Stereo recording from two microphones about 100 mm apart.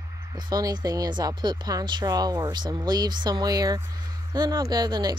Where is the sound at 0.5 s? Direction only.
40° right (ahead or behind).